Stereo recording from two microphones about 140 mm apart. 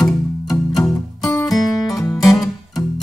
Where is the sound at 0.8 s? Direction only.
25° left (ahead or behind).